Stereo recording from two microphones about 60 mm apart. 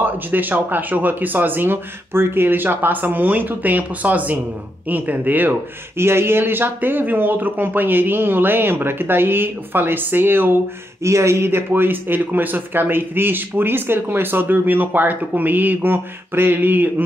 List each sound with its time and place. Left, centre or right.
0.0 s speech: right
5.9 s speech: right
11.1 s speech: right